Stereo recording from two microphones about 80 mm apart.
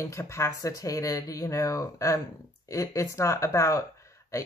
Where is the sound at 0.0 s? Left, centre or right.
Left.